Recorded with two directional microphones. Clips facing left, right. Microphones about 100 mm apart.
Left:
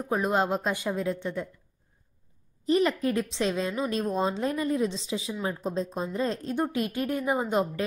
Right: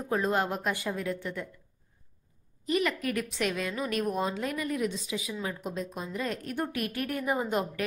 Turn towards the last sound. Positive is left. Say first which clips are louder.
# left 3 dB
turn(degrees=20)  # may be behind; listen again after turning